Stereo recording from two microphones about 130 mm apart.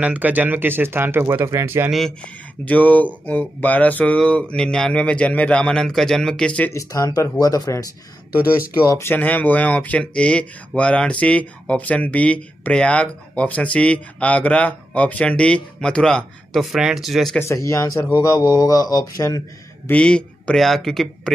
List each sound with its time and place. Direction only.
0.0 s speech: 10° right (ahead or behind)
1.9 s speech: centre (ahead or behind)
2.6 s speech: 10° left (ahead or behind)
6.7 s speech: 25° left (ahead or behind)
8.8 s speech: 20° left (ahead or behind); by 17.4 s centre (ahead or behind)
17.4 s speech: 25° left (ahead or behind)
19.9 s speech: 10° left (ahead or behind)